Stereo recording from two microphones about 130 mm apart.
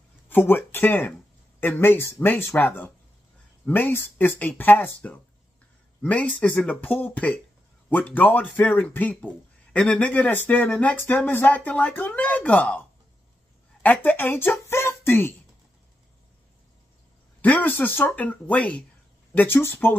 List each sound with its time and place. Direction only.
0.3 s speech: 15° left (ahead or behind)
13.8 s speech: 15° left (ahead or behind)
17.4 s speech: 15° left (ahead or behind)